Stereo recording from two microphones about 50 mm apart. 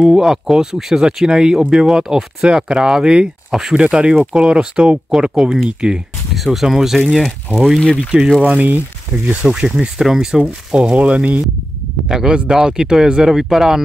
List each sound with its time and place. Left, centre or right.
0.0 s speech: centre
3.5 s speech: centre
3.9 s speech: centre
6.3 s speech: centre
8.1 s speech: right
8.5 s speech: right
9.1 s speech: right
9.7 s speech: centre
10.7 s speech: centre
12.1 s speech: centre